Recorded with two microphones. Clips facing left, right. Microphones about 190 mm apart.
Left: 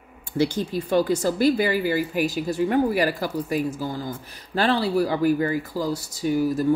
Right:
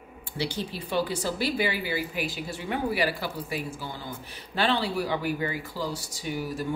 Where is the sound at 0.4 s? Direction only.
45° left (ahead or behind).